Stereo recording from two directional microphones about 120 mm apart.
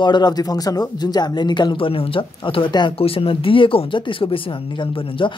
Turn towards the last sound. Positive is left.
turn(degrees=45)  # may be behind; listen again after turning